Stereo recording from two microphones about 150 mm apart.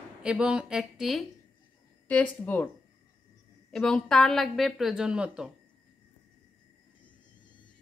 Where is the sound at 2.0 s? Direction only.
10° left (ahead or behind).